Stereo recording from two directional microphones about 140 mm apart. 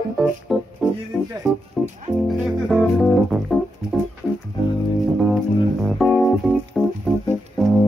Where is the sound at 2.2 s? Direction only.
Centre (ahead or behind).